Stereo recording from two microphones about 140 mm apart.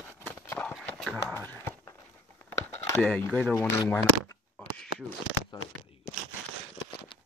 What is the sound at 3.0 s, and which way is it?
Speech, 10° left (ahead or behind).